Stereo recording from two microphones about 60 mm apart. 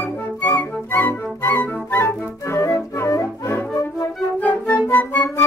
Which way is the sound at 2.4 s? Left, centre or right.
Left.